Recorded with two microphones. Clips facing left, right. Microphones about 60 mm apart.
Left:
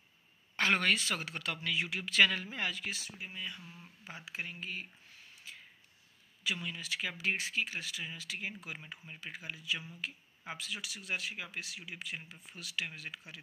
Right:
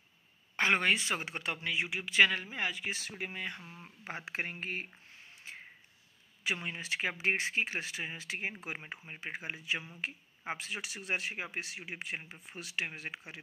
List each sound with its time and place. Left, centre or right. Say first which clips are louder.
0.6 s speech: right 1 dB; right
3.0 s speech: right 4 dB; right
3.6 s speech: right 2 dB; right
4.0 s speech: right 5 dB; right
5.4 s a sound: right 4 dB; right
6.4 s speech: right 2 dB; right